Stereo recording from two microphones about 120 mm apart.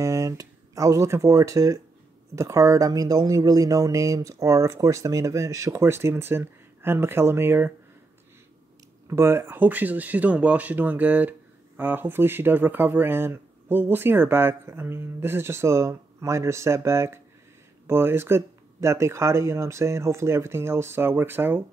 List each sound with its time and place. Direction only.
0.0 s speech: 30° right (ahead or behind)
9.0 s speech: 20° right (ahead or behind)